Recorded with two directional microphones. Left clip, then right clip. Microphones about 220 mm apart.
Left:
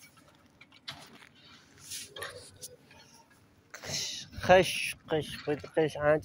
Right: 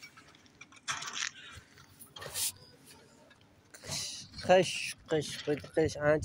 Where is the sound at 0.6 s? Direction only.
45° left (ahead or behind).